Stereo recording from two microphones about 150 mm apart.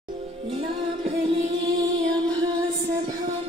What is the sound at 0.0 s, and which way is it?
Music, 35° right (ahead or behind).